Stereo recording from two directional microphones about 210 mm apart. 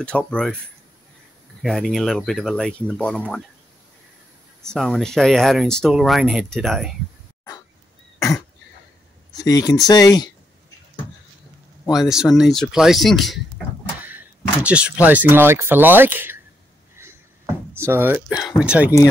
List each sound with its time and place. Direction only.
0.0 s speech: 5° left (ahead or behind)
1.6 s speech: centre (ahead or behind)
4.6 s speech: centre (ahead or behind)
9.4 s speech: 15° left (ahead or behind)
11.8 s speech: centre (ahead or behind)
17.7 s speech: 10° right (ahead or behind)